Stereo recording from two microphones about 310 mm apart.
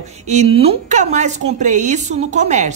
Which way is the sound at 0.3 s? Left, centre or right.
Right.